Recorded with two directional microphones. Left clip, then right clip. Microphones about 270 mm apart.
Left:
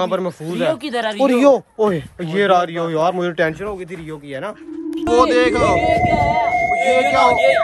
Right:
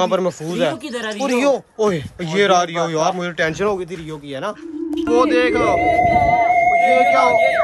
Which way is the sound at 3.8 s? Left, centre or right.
Centre.